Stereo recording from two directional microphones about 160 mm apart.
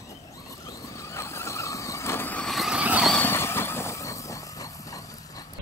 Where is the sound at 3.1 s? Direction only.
15° left (ahead or behind).